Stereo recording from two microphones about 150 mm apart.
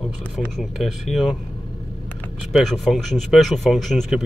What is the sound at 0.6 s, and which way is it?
Speech, centre (ahead or behind).